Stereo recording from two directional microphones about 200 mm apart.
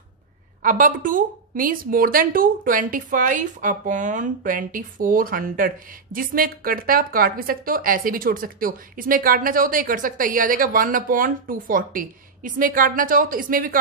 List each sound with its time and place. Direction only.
0.6 s a woman's voice: 45° right (ahead or behind)